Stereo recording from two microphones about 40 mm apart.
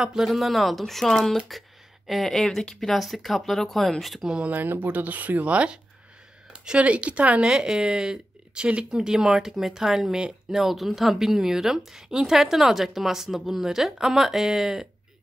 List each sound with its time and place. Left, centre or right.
0.0 s a woman's voice: centre
0.3 s speech: centre
2.6 s speech: centre
2.9 s speech: centre
4.5 s speech: right
6.5 s a sound: right
6.8 s speech: right
7.5 s speech: centre
8.9 s a woman's voice: centre